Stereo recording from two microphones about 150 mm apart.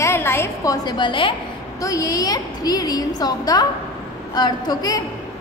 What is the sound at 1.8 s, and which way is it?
A woman's voice, 20° left (ahead or behind).